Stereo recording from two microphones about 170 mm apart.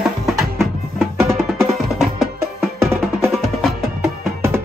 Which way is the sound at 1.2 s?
15° right (ahead or behind).